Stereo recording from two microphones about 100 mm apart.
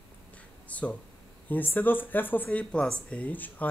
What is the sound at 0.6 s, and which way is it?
Speech, 15° left (ahead or behind).